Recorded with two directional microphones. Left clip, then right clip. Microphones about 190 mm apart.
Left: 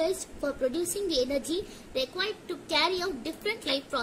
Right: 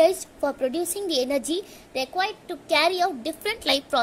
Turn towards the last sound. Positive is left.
turn(degrees=-40)  # may be behind; listen again after turning